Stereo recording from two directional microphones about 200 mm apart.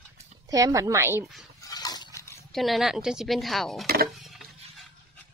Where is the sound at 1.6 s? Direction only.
20° left (ahead or behind).